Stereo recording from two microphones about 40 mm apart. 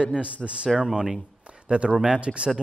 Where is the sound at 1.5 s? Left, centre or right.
Right.